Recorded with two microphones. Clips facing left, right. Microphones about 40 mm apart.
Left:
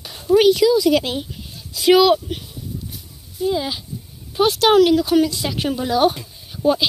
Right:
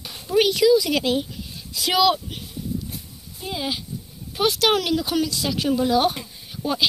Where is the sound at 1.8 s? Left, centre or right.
Centre.